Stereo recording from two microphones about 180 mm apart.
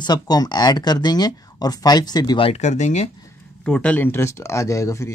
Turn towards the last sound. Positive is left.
turn(degrees=15)  # may be behind; listen again after turning